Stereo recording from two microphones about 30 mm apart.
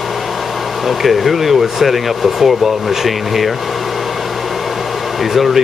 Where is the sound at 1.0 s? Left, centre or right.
Centre.